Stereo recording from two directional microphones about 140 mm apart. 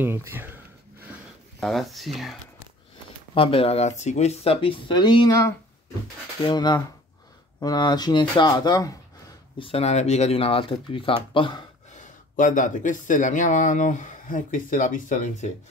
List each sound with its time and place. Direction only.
0.0 s speech: 15° right (ahead or behind)
1.6 s speech: centre (ahead or behind)
3.3 s speech: 40° left (ahead or behind)
9.6 s speech: 45° left (ahead or behind)
12.0 s speech: 65° left (ahead or behind)